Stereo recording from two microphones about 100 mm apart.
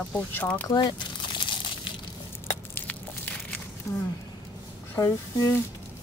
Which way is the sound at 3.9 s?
35° left (ahead or behind).